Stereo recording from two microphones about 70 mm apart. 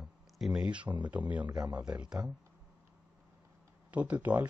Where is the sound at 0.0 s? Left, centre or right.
Centre.